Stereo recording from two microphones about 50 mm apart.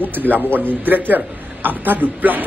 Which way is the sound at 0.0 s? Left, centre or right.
Right.